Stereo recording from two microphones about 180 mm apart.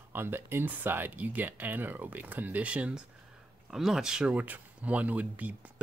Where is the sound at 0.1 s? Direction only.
10° right (ahead or behind).